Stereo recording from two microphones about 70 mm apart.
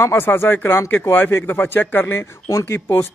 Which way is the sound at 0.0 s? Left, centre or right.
Left.